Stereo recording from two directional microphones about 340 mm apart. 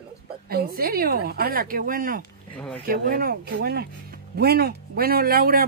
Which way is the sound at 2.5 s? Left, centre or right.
Centre.